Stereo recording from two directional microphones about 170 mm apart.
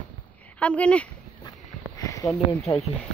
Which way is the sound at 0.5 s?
5° left (ahead or behind).